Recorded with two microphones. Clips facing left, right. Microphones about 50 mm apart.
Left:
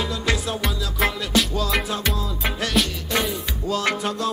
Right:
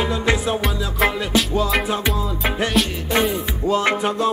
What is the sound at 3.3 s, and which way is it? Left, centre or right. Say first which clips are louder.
Music: right 5 dB; right.